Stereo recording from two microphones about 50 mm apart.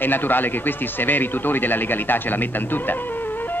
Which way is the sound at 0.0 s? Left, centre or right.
Left.